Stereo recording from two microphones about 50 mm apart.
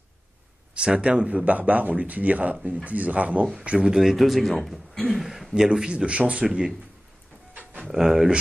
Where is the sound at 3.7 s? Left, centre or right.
Centre.